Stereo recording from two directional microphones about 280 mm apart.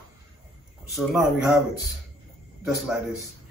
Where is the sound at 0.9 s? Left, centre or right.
Centre.